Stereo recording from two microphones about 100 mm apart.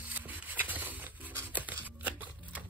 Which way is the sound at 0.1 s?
20° right (ahead or behind).